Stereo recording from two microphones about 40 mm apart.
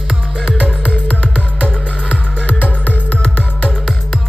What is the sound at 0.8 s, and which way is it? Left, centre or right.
Music, left.